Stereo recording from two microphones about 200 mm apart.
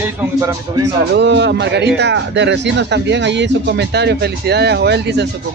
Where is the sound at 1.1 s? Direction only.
60° right (ahead or behind).